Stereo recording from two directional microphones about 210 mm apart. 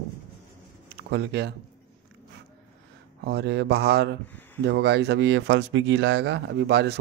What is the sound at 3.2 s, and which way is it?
Speech, 55° right (ahead or behind).